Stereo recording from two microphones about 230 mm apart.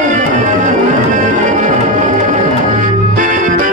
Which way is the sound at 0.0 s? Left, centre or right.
Right.